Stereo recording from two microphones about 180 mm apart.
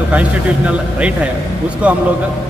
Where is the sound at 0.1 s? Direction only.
5° right (ahead or behind).